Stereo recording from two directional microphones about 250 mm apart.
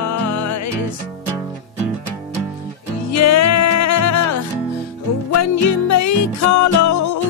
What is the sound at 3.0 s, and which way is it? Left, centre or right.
Music, left.